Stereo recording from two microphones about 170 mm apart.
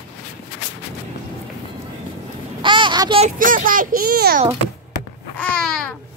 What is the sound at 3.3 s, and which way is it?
A child's voice, 55° right (ahead or behind).